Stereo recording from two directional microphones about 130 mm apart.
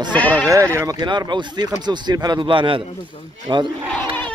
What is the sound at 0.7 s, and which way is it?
Speech, 25° right (ahead or behind).